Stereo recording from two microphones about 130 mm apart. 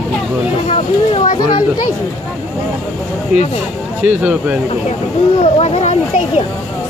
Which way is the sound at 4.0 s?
10° right (ahead or behind).